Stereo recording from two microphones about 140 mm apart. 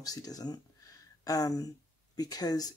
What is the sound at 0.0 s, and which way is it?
Speech, 25° left (ahead or behind).